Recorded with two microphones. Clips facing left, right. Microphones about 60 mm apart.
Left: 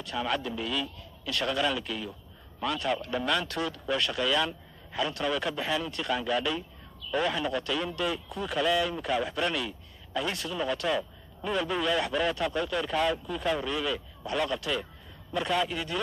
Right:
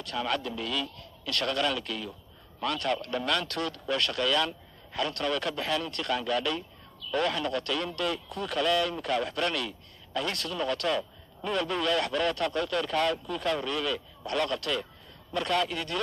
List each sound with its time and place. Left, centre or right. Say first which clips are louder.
0.0 s a man's voice: even; centre